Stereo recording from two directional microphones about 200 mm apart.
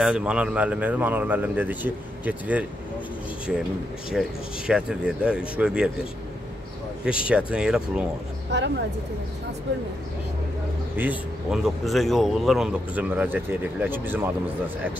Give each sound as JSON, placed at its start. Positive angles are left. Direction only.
{"t": 0.0, "sound": "speech", "side_deg": -5}
{"t": 4.1, "sound": "speech", "side_deg": -5}
{"t": 7.1, "sound": "speech", "side_deg": -5}
{"t": 8.5, "sound": "speech", "side_deg": -60}
{"t": 11.0, "sound": "speech", "side_deg": -5}